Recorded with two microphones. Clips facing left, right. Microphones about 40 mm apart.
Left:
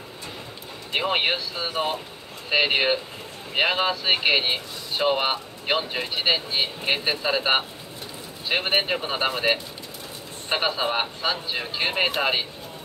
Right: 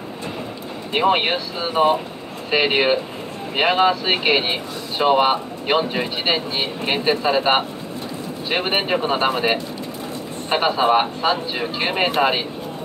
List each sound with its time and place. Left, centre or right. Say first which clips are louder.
0.9 s speech: right 5 dB; centre